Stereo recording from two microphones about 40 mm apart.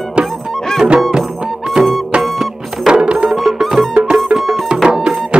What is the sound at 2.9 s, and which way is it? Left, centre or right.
Music, right.